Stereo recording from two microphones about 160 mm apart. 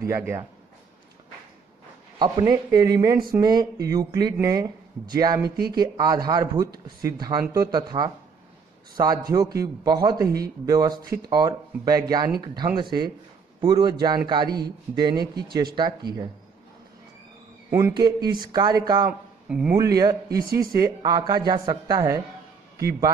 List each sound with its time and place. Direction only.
0.0 s speech: 15° right (ahead or behind)
2.1 s speech: 30° right (ahead or behind)
5.4 s speech: 85° right
5.8 s speech: 25° right (ahead or behind)
17.6 s a man's voice: 15° right (ahead or behind)